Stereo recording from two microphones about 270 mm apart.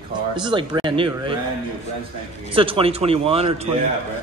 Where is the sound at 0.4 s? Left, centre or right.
Centre.